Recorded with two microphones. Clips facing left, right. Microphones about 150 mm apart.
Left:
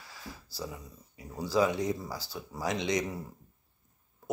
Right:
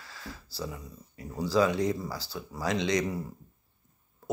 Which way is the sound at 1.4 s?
20° left (ahead or behind).